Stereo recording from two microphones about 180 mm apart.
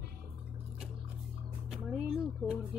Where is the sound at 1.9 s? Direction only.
Centre (ahead or behind).